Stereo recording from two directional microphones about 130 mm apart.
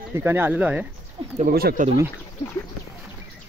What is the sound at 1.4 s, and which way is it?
Speech, 90° right.